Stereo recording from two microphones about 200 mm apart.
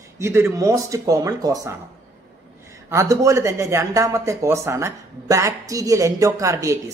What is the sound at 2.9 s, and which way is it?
Speech, 15° right (ahead or behind).